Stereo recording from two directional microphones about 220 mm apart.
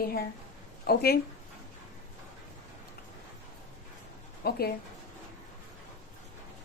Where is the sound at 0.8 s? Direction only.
45° left (ahead or behind).